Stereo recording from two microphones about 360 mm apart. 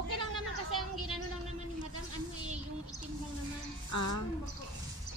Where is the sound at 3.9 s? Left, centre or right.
Left.